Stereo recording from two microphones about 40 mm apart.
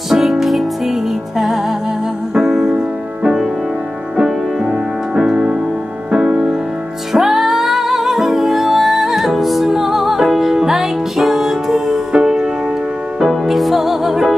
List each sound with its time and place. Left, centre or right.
0.1 s music: centre
2.3 s music: centre
4.2 s music: right
7.1 s music: centre
13.3 s music: centre